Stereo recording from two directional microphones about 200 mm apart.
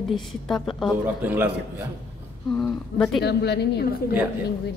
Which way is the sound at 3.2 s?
55° left (ahead or behind).